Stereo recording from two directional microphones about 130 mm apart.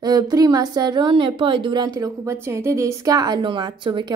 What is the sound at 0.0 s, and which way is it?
Speech, 30° right (ahead or behind).